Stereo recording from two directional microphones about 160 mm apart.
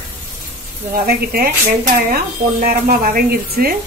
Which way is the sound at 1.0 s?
70° right (ahead or behind).